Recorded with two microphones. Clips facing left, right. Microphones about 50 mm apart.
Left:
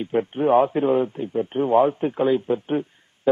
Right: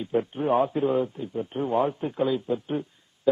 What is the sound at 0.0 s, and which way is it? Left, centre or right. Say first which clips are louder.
A man's voice: left 4 dB; left.